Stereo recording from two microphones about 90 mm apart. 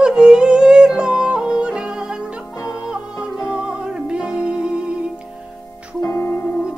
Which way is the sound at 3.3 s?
35° left (ahead or behind).